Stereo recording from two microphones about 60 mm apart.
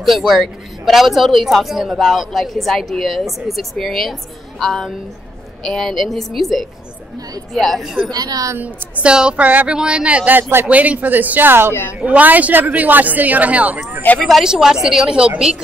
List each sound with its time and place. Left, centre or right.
0.3 s a woman's voice: centre
8.1 s a woman's voice: right
9.0 s a woman's voice: centre
10.3 s speech: right
12.2 s speech: right
14.0 s speech: left
14.4 s a woman's voice: centre